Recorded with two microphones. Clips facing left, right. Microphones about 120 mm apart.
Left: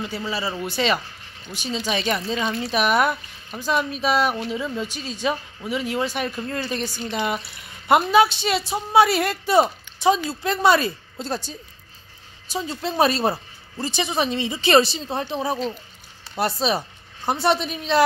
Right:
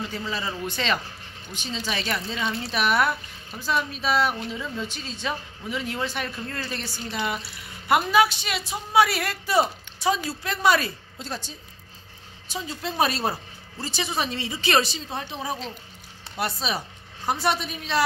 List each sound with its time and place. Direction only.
0.1 s a woman's voice: 10° left (ahead or behind); by 11.5 s 35° left (ahead or behind)
12.5 s a woman's voice: 30° left (ahead or behind)